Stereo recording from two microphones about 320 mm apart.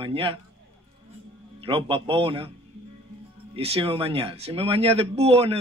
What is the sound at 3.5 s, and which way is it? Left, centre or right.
Speech, centre.